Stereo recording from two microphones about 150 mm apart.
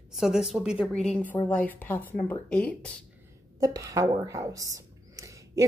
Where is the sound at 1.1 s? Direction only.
10° left (ahead or behind).